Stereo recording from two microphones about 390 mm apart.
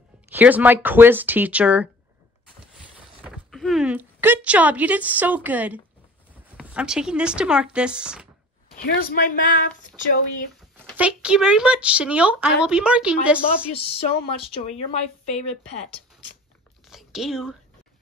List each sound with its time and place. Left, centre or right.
0.3 s speech: centre
3.3 s speech: centre
8.7 s speech: left
11.0 s speech: centre
13.7 s speech: centre
16.9 s a sound: centre